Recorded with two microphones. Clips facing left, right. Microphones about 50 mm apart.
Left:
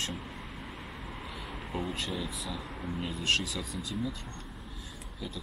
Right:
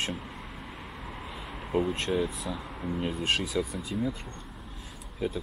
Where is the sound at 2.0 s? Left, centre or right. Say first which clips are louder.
Right 7 dB; right.